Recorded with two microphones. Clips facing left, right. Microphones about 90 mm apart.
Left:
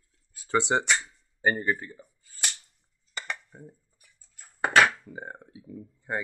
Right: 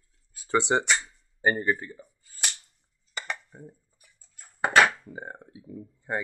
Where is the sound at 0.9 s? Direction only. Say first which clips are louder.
Even; 10° right (ahead or behind).